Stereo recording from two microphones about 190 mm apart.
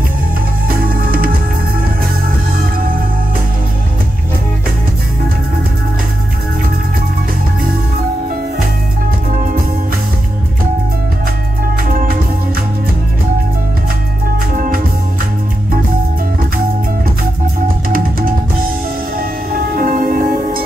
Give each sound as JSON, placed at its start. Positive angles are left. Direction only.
{"t": 0.7, "sound": "music", "side_deg": -50}
{"t": 9.3, "sound": "music", "side_deg": -45}
{"t": 11.9, "sound": "music", "side_deg": -50}
{"t": 14.5, "sound": "music", "side_deg": -45}
{"t": 17.8, "sound": "music", "side_deg": -50}
{"t": 19.7, "sound": "music", "side_deg": -50}